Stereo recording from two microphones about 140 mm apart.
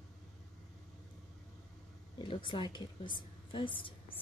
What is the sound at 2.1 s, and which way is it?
A woman's voice, 35° left (ahead or behind).